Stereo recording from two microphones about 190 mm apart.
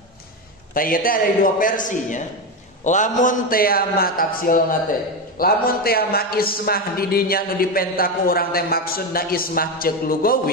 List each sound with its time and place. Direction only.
0.7 s a man's voice: 50° left (ahead or behind)